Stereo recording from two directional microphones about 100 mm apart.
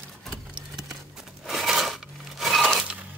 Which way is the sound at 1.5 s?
Centre (ahead or behind).